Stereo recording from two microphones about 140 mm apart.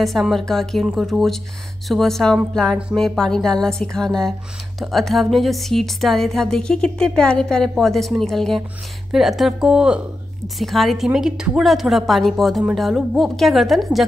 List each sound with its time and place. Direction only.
0.0 s speech: centre (ahead or behind)